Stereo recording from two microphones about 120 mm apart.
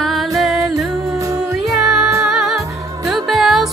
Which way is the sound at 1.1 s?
30° right (ahead or behind).